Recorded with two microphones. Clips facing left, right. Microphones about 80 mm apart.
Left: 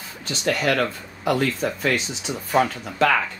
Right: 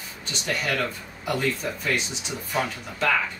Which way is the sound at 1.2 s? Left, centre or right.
Left.